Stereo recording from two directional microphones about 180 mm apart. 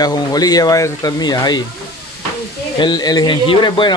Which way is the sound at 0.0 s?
20° left (ahead or behind).